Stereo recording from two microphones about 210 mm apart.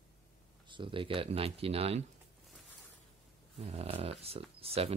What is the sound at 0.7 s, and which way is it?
Speech, 25° right (ahead or behind).